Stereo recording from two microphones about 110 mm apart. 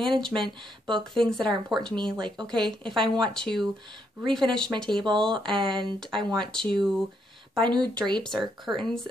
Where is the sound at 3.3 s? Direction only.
5° left (ahead or behind).